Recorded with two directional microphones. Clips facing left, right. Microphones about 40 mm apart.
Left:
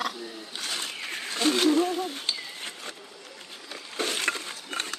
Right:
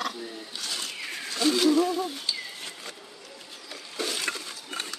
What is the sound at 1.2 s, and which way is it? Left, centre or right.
Speech, left.